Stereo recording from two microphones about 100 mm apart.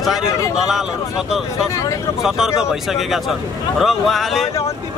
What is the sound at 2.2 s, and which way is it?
Speech, 5° right (ahead or behind).